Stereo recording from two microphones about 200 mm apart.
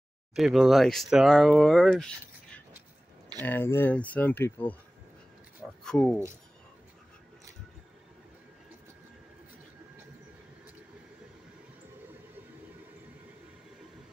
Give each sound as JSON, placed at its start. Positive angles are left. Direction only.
{"t": 0.4, "sound": "speech", "side_deg": 0}
{"t": 5.9, "sound": "speech", "side_deg": 5}